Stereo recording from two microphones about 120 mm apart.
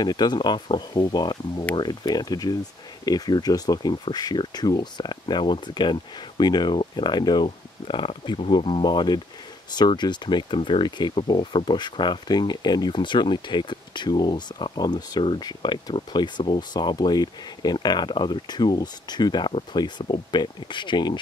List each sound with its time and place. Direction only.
0.0 s speech: 35° left (ahead or behind)